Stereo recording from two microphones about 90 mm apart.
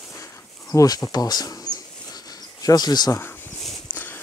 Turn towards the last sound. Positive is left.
turn(degrees=20)  # may be behind; listen again after turning